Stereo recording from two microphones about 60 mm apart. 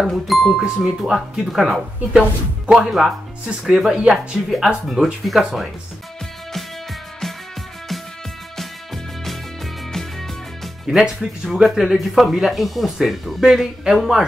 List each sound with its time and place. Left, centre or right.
0.0 s speech: centre
4.8 s speech: centre
8.5 s music: centre
11.0 s speech: centre